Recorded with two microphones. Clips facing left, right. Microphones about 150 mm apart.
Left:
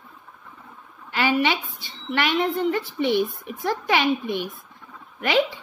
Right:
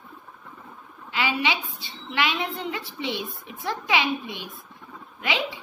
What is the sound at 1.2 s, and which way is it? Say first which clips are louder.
A woman's voice: left 4 dB; 55° left (ahead or behind).